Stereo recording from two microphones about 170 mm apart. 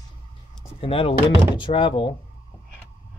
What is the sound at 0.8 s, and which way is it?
Speech, 30° left (ahead or behind).